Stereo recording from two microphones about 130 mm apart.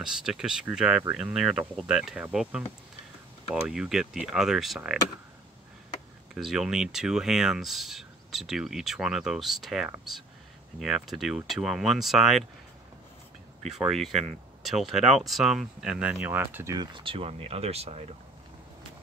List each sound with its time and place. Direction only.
0.0 s speech: 5° right (ahead or behind)
3.6 s speech: 5° right (ahead or behind)
6.3 s speech: 5° right (ahead or behind)
13.7 s speech: centre (ahead or behind); by 16.7 s 15° right (ahead or behind)
16.7 s speech: 35° right (ahead or behind); by 18.0 s 55° right (ahead or behind)